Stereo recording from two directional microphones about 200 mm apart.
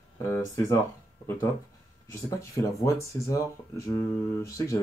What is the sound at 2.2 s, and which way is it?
Speech, 15° left (ahead or behind).